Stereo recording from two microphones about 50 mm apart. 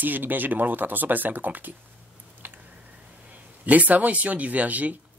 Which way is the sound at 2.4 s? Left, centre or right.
Right.